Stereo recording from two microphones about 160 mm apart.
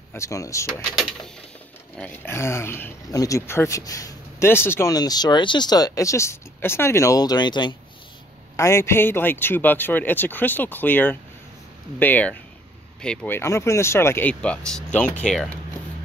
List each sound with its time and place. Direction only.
0.1 s speech: 20° left (ahead or behind)
2.0 s speech: 10° left (ahead or behind)
13.4 s speech: 20° left (ahead or behind); by 15.5 s centre (ahead or behind)